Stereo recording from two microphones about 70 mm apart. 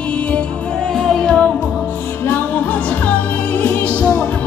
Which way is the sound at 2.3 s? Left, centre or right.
Left.